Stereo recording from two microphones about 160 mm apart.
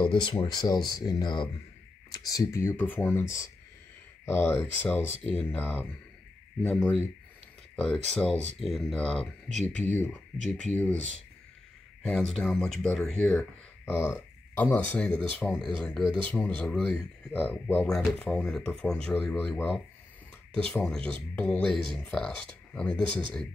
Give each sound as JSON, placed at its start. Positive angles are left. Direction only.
{"t": 0.0, "sound": "speech", "side_deg": 30}
{"t": 12.0, "sound": "speech", "side_deg": 5}
{"t": 13.9, "sound": "speech", "side_deg": 15}